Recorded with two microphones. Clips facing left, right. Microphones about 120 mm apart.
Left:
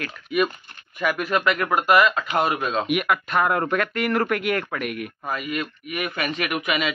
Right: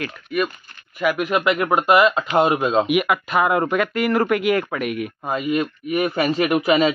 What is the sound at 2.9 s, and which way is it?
Speech, 5° right (ahead or behind).